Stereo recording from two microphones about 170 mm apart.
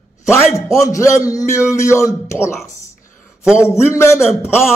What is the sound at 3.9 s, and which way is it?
Speech, 15° left (ahead or behind).